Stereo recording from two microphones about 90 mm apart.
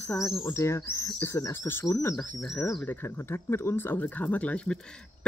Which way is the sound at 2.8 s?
25° left (ahead or behind).